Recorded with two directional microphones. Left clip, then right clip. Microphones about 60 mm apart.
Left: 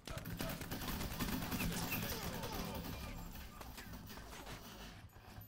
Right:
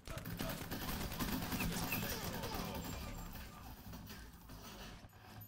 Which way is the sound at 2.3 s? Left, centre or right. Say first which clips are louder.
Right 1 dB; right.